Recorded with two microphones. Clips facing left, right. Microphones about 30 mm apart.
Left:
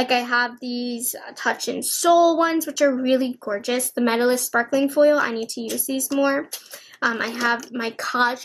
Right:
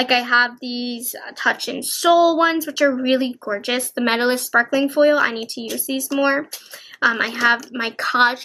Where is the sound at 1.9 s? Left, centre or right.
Right.